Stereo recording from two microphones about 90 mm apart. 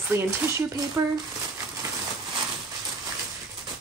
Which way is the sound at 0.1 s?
25° right (ahead or behind).